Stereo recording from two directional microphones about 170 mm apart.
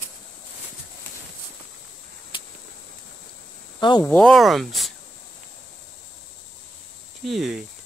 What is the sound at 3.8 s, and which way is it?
Speech, 25° left (ahead or behind).